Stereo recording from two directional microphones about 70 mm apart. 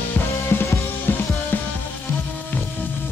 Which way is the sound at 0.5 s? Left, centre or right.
Left.